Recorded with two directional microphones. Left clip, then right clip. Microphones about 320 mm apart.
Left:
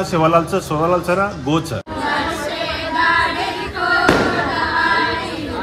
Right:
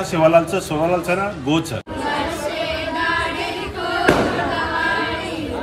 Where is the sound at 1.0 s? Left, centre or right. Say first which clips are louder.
Left 3 dB; centre.